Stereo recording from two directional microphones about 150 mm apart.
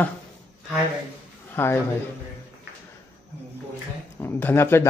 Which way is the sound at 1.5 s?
15° left (ahead or behind).